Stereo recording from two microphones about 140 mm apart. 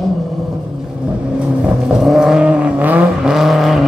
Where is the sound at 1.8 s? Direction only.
5° right (ahead or behind).